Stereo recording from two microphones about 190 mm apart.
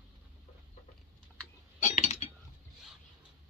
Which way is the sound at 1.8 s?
40° left (ahead or behind).